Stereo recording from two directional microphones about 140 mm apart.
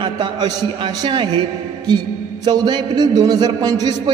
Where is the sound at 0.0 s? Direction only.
30° right (ahead or behind).